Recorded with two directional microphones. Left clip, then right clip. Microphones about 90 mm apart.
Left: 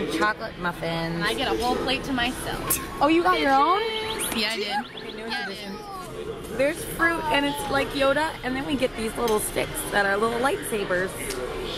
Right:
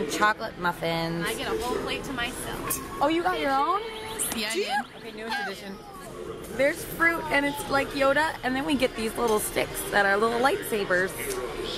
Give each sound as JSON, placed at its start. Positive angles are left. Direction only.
{"t": 0.1, "sound": "speech", "side_deg": -15}
{"t": 1.9, "sound": "a woman's voice", "side_deg": 40}
{"t": 3.0, "sound": "a woman's voice", "side_deg": 0}
{"t": 3.3, "sound": "a woman's voice", "side_deg": 40}
{"t": 4.3, "sound": "speech", "side_deg": -5}
{"t": 4.6, "sound": "speech", "side_deg": -70}
{"t": 6.6, "sound": "a woman's voice", "side_deg": -5}
{"t": 8.5, "sound": "speech", "side_deg": -25}
{"t": 8.8, "sound": "speech", "side_deg": -10}